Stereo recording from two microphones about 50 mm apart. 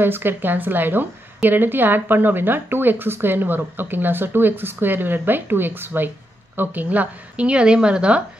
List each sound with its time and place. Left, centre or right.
0.0 s a woman's voice: right